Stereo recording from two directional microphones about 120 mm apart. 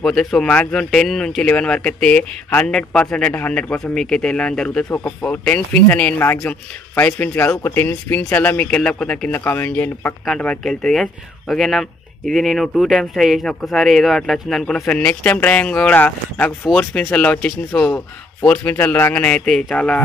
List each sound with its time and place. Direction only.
0.0 s speech: 5° left (ahead or behind)
9.3 s speech: 15° left (ahead or behind)